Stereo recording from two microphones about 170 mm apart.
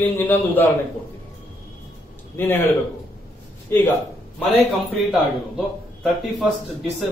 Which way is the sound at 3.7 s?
15° left (ahead or behind).